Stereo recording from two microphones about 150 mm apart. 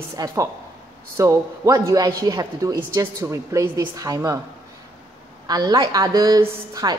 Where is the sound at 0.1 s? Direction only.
20° right (ahead or behind).